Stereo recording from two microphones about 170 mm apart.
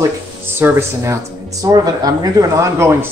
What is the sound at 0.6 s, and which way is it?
Speech, 15° right (ahead or behind).